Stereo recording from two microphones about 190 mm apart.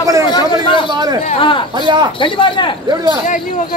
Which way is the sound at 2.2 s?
25° left (ahead or behind).